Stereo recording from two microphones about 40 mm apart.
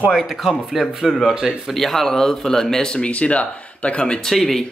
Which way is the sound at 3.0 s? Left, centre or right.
Left.